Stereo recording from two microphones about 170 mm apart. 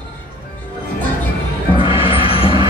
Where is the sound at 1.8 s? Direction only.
30° left (ahead or behind).